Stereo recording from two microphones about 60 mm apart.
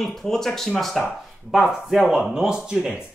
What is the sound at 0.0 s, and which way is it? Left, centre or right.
Speech, centre.